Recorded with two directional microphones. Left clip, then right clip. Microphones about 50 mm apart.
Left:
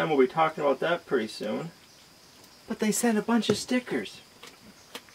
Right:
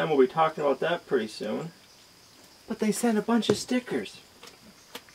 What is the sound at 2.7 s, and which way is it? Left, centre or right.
Speech, left.